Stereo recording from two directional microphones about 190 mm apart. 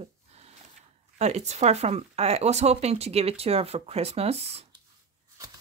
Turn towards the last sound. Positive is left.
turn(degrees=-35)  # may be behind; listen again after turning